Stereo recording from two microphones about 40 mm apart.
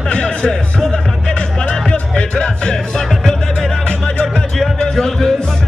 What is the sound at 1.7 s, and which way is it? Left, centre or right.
Music, left.